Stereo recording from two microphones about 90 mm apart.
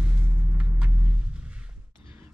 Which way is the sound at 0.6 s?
15° right (ahead or behind).